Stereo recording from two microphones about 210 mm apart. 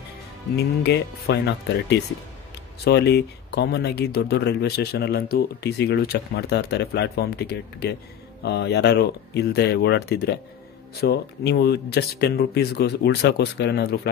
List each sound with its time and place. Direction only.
0.8 s speech: 50° left (ahead or behind)